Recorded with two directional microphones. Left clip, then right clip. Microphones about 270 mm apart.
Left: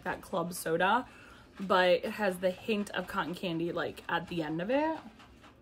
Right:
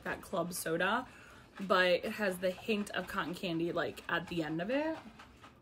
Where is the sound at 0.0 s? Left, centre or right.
Centre.